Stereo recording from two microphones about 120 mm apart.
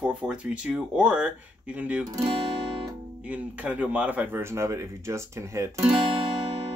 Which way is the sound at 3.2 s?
15° right (ahead or behind).